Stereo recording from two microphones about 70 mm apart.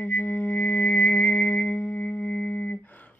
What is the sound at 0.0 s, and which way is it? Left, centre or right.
Music, left.